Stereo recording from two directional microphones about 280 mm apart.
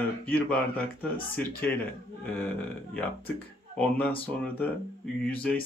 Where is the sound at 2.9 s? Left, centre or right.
Centre.